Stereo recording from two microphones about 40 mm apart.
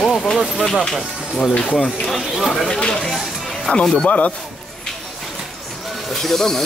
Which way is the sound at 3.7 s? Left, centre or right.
Left.